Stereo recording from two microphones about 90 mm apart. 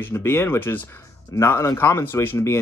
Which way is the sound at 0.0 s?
30° left (ahead or behind).